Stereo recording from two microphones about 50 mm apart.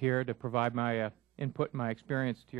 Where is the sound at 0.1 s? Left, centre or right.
Centre.